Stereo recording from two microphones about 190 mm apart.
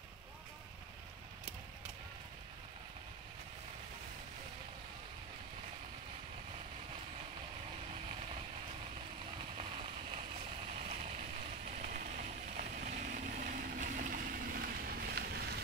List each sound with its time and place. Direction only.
11.8 s vehicle: 45° right (ahead or behind)